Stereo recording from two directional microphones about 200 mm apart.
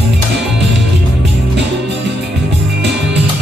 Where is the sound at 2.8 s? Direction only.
60° right (ahead or behind).